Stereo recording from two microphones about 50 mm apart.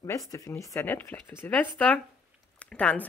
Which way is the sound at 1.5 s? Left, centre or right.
Left.